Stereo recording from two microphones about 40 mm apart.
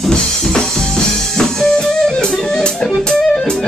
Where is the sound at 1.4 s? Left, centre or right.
Centre.